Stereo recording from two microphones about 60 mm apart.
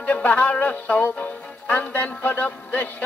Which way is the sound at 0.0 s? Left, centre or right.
Left.